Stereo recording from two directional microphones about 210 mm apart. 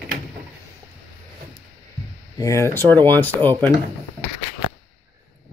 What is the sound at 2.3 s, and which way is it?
Speech, 15° left (ahead or behind).